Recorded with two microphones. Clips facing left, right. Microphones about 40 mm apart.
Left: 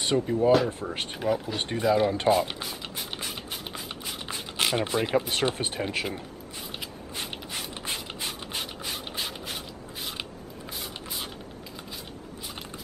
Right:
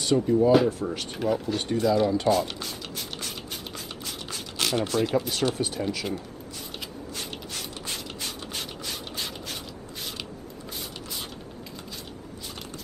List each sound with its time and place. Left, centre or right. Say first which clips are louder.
0.0 s speech: right 3 dB; left
0.8 s speech: right 1 dB; centre
1.8 s speech: even; left
2.0 s speech: even; left
2.3 s a sound: even; centre; by 6.0 s left
7.2 s rub: left 2 dB; left